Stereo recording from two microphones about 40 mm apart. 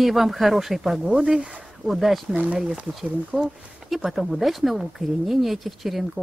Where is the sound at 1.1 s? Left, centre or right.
Centre.